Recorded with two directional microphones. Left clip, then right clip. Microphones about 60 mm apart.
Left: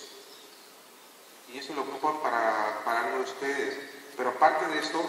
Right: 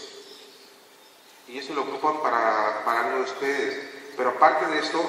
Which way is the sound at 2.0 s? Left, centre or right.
Centre.